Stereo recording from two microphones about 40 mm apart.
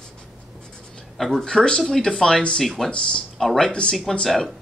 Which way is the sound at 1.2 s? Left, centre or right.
Centre.